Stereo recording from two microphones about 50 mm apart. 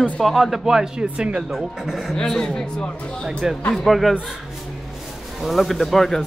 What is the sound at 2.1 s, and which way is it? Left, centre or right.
Speech, centre.